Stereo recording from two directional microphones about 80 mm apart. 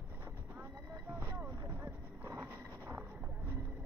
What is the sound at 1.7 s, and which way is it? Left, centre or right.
Clip-clop, right.